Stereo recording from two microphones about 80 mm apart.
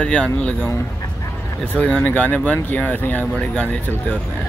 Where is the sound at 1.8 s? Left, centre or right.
Centre.